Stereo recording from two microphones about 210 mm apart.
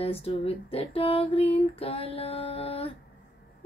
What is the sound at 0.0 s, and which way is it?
Female singing, 25° left (ahead or behind).